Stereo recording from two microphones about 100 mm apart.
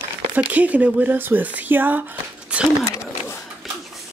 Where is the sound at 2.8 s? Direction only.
30° left (ahead or behind).